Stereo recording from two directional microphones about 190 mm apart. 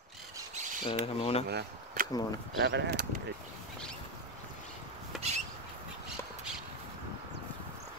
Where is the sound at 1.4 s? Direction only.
60° right (ahead or behind).